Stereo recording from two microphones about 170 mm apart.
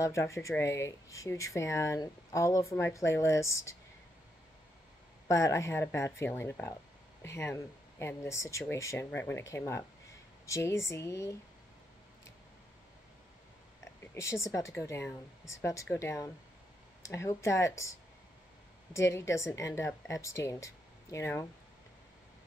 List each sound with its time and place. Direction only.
0.0 s speech: 15° left (ahead or behind)
5.3 s speech: 15° left (ahead or behind)
14.1 s speech: 15° left (ahead or behind)
18.9 s speech: 15° left (ahead or behind)